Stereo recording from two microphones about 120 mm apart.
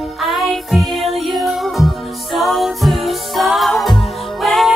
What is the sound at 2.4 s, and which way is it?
Music, centre (ahead or behind).